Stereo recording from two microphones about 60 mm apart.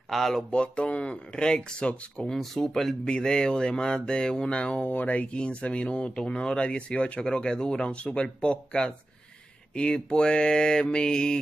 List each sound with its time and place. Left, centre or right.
0.1 s speech: centre
2.2 s speech: centre